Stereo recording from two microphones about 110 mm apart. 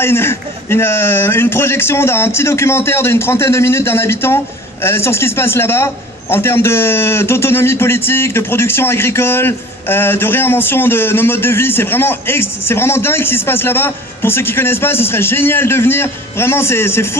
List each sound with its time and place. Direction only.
0.0 s speech: 20° left (ahead or behind)